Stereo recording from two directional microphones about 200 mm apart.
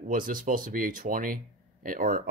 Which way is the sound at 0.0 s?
45° right (ahead or behind).